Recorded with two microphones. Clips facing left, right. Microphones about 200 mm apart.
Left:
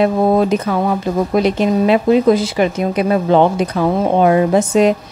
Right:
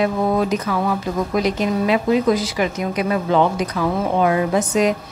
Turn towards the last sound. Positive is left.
turn(degrees=30)  # may be behind; listen again after turning